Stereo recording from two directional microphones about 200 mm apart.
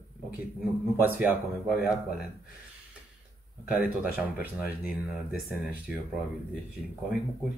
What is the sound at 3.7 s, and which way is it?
Speech, 10° right (ahead or behind).